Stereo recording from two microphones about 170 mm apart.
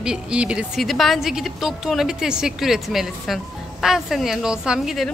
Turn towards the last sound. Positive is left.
turn(degrees=0)  # may be behind; listen again after turning